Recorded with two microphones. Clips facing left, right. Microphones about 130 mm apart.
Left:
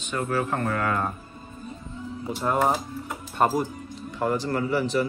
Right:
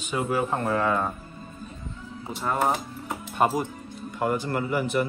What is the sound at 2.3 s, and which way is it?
Speech, centre (ahead or behind).